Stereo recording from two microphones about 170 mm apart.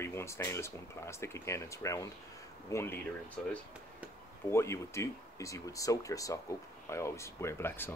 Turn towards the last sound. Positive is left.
turn(degrees=15)  # may be behind; listen again after turning